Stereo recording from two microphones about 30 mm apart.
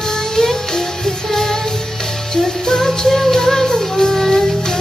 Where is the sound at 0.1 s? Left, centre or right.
Centre.